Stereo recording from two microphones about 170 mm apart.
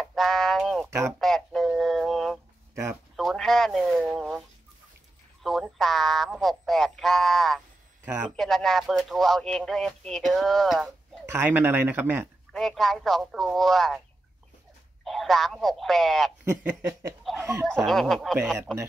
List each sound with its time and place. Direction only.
0.0 s a sound: centre (ahead or behind)
0.8 s speech: 15° right (ahead or behind)
1.2 s a sound: centre (ahead or behind)
2.7 s speech: 15° right (ahead or behind)
3.2 s speech: centre (ahead or behind)
8.0 s a man's voice: 10° right (ahead or behind)
8.4 s speech: centre (ahead or behind)
11.2 s speech: 10° right (ahead or behind)
12.5 s speech: centre (ahead or behind)
15.0 s speech: centre (ahead or behind)
16.4 s speech: 15° right (ahead or behind)
17.8 s speech: centre (ahead or behind)